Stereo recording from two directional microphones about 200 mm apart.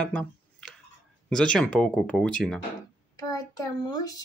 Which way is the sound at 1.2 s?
5° left (ahead or behind).